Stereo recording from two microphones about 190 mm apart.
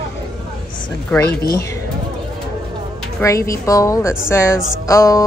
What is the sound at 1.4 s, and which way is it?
Speech, 55° left (ahead or behind).